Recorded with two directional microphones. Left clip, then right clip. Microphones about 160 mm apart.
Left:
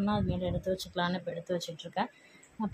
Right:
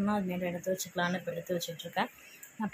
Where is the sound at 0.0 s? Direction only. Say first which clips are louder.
Even; 5° left (ahead or behind).